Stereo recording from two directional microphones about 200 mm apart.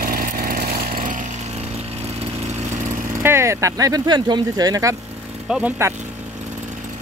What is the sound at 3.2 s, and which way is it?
Speech, 15° right (ahead or behind).